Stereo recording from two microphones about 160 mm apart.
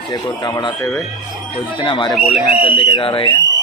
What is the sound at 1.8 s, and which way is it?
Speech, 30° left (ahead or behind).